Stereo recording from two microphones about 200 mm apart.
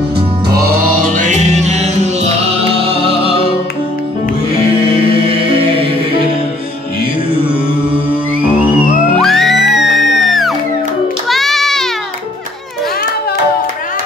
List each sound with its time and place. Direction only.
0.5 s music: 50° right (ahead or behind)
1.1 s music: 40° right (ahead or behind)
9.1 s music: centre (ahead or behind)